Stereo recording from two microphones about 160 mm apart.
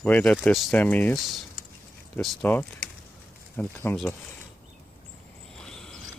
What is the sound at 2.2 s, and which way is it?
Speech, 15° left (ahead or behind).